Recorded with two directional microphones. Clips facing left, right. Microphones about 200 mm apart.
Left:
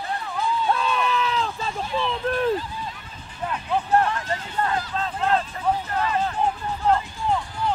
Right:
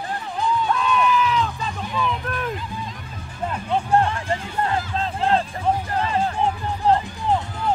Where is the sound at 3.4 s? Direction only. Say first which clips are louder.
Right 2 dB; 25° right (ahead or behind).